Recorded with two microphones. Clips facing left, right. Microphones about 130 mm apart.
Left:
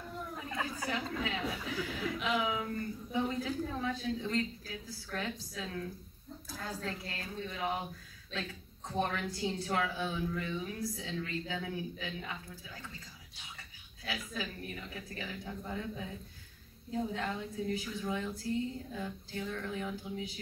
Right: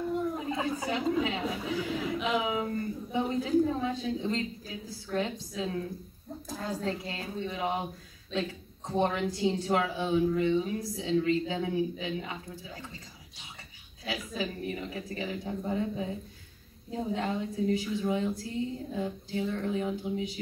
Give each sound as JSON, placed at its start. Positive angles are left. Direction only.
{"t": 0.4, "sound": "a woman's voice", "side_deg": -25}
{"t": 14.0, "sound": "a woman's voice", "side_deg": -25}